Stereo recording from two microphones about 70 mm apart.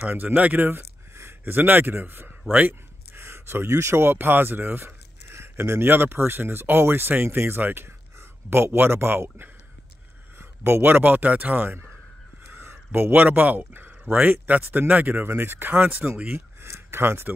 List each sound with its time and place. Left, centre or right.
0.1 s speech: right
10.6 s speech: right
16.6 s a sound: right